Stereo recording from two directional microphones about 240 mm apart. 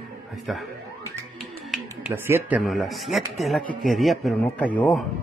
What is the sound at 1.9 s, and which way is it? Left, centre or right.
Speech, centre.